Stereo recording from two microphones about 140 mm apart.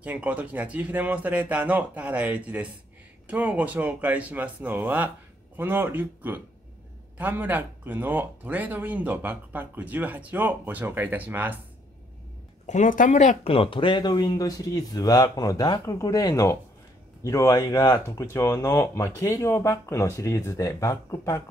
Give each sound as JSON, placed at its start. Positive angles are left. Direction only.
{"t": 0.0, "sound": "speech", "side_deg": -10}
{"t": 12.6, "sound": "speech", "side_deg": 60}
{"t": 13.5, "sound": "speech", "side_deg": 40}